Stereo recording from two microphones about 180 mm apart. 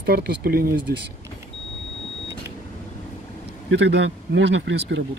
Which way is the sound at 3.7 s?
80° right.